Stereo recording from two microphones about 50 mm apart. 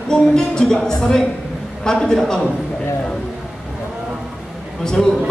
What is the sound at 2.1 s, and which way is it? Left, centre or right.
Speech, centre.